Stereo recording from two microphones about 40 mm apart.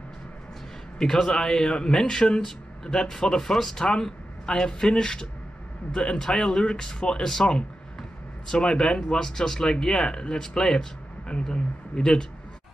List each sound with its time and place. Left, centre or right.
0.9 s speech: centre